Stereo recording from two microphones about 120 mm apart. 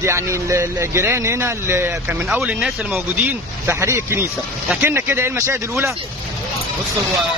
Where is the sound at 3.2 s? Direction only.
20° right (ahead or behind).